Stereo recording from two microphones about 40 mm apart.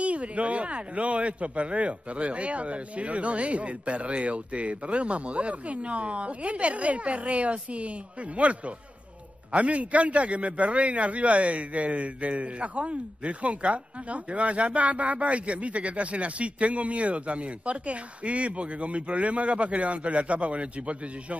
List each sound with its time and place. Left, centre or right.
0.0 s a man's voice: right